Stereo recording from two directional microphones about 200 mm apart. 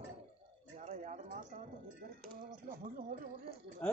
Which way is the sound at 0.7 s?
40° right (ahead or behind).